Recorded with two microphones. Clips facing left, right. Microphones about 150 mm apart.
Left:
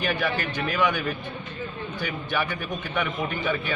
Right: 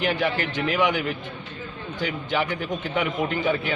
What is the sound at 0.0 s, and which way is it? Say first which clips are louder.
A man's voice: right 2 dB; 20° right (ahead or behind).